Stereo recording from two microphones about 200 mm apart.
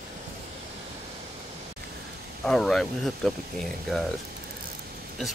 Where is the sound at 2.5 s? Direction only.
Centre (ahead or behind).